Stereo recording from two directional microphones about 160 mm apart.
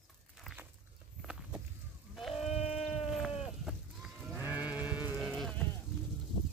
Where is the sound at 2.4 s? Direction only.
40° left (ahead or behind).